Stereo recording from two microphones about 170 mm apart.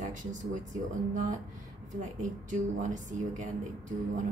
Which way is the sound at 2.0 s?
45° right (ahead or behind).